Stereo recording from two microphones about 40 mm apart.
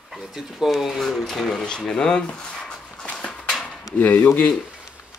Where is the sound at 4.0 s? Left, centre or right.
Left.